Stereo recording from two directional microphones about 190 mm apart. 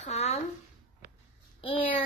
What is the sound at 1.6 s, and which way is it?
Speech, 30° left (ahead or behind).